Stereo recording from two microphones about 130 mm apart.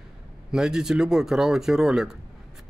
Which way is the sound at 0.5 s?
5° right (ahead or behind).